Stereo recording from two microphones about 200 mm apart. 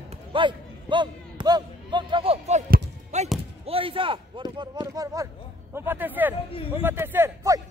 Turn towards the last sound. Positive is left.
turn(degrees=-15)  # may be behind; listen again after turning